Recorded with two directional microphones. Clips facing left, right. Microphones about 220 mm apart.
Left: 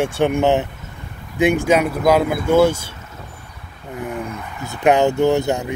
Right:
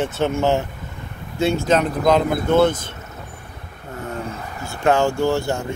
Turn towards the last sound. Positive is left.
turn(degrees=20)  # may be behind; listen again after turning